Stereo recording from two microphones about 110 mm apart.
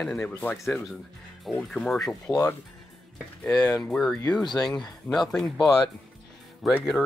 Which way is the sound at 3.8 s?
5° left (ahead or behind).